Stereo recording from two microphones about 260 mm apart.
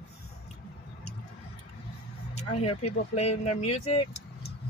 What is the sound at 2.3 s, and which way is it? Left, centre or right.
Speech, left.